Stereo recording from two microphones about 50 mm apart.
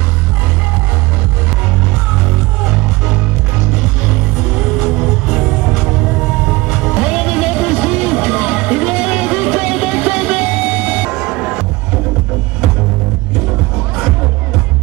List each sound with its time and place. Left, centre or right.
5.3 s music: centre
11.1 s music: centre